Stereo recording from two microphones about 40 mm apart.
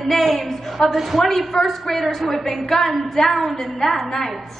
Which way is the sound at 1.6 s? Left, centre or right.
Centre.